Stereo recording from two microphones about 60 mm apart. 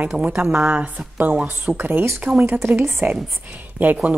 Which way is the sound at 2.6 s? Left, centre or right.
Right.